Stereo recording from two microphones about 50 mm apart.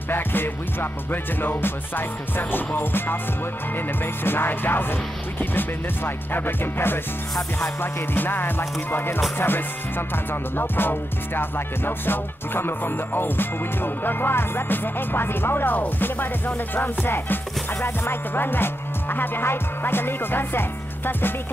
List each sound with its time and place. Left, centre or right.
0.1 s music: left